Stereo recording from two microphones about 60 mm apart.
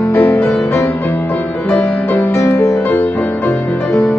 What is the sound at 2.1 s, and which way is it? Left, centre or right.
Music, left.